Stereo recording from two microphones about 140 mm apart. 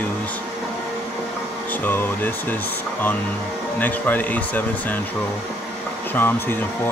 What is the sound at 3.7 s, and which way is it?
Speech, 10° left (ahead or behind).